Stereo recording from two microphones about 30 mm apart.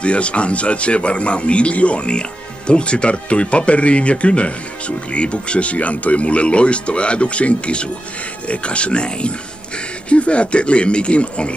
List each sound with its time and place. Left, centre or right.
0.0 s speech: left